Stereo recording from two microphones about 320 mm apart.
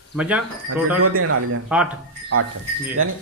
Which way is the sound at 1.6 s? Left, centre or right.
Centre.